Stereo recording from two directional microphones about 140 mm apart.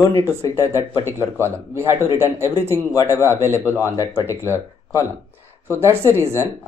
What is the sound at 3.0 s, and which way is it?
Speech, 20° left (ahead or behind).